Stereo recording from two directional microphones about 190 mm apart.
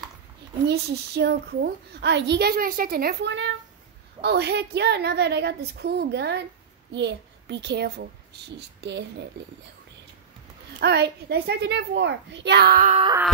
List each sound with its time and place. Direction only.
0.7 s a child's voice: 60° right (ahead or behind)
10.8 s a child's voice: 60° right (ahead or behind)